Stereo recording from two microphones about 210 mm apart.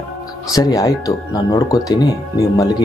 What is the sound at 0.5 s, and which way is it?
Speech, 15° left (ahead or behind).